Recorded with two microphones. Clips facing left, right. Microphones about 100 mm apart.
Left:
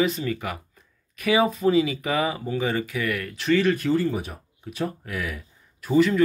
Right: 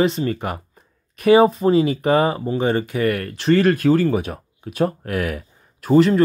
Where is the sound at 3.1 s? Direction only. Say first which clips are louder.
Right 6 dB; 50° right (ahead or behind).